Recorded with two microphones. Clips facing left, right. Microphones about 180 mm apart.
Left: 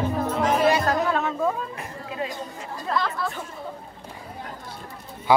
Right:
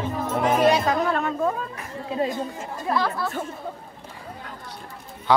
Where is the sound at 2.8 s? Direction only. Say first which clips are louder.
Right 2 dB; 10° right (ahead or behind).